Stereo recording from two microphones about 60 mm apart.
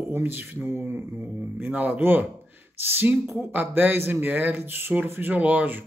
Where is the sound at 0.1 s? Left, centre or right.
Right.